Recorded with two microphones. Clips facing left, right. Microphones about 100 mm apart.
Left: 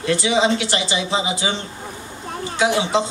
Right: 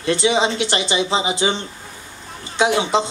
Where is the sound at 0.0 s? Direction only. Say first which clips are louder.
Even; 25° right (ahead or behind).